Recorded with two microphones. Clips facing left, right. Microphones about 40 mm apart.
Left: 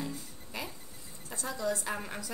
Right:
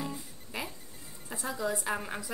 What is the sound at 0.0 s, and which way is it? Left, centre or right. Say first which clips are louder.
Music: right 1 dB; right.